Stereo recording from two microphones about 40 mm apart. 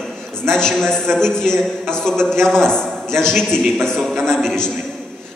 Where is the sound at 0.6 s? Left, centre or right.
Centre.